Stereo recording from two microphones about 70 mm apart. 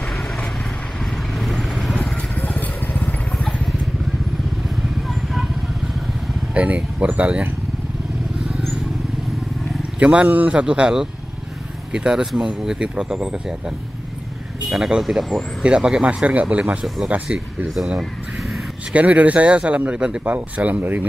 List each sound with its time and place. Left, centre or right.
1.4 s vehicle: centre
2.4 s vehicle: left
5.0 s vehicle: centre
6.5 s speech: centre
8.5 s vehicle: centre
9.9 s speech: centre
17.6 s speech: centre
18.9 s speech: right